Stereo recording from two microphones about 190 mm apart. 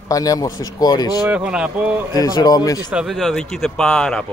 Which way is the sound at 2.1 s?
20° left (ahead or behind).